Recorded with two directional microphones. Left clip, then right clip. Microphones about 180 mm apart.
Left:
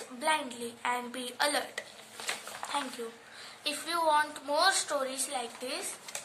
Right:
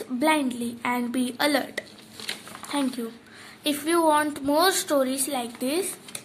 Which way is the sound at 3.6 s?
55° right (ahead or behind).